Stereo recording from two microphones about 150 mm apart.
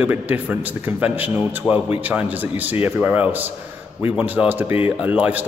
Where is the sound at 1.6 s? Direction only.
15° left (ahead or behind).